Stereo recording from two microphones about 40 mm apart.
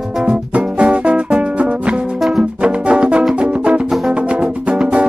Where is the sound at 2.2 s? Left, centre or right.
Centre.